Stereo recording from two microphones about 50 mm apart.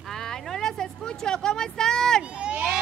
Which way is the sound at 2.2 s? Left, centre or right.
Right.